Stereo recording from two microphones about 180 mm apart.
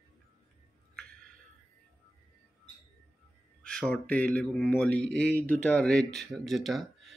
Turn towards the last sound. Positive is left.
turn(degrees=0)  # may be behind; listen again after turning